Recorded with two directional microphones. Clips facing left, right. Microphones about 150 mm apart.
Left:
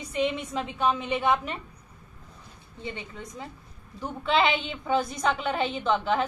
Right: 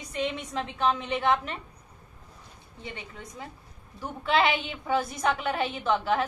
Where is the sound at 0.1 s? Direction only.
10° left (ahead or behind).